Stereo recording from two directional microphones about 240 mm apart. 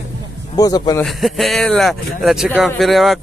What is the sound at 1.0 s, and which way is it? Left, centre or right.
Speech, centre.